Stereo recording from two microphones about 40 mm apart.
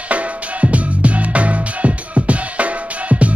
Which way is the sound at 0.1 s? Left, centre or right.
Right.